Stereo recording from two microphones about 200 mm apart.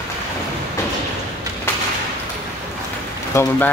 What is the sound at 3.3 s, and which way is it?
Speech, 10° left (ahead or behind).